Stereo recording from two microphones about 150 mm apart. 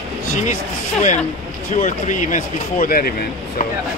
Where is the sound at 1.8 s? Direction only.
60° left (ahead or behind); by 3.6 s 75° left (ahead or behind).